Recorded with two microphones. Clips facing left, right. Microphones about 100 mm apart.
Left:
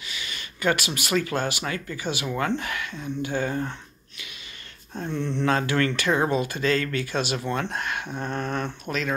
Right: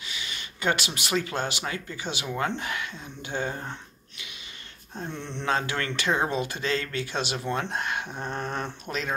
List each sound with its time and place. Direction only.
0.1 s speech: 20° right (ahead or behind)
4.9 s a sound: centre (ahead or behind)
5.4 s speech: 20° right (ahead or behind)